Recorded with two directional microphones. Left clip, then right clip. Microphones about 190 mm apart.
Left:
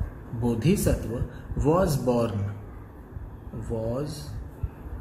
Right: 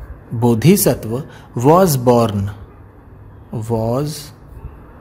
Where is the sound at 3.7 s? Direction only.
65° right (ahead or behind).